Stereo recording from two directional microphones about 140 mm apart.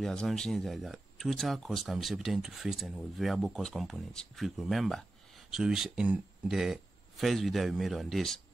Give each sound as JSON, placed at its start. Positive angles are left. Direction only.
{"t": 0.0, "sound": "speech", "side_deg": 5}